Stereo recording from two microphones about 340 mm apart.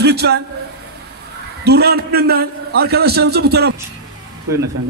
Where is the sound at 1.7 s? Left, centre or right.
Right.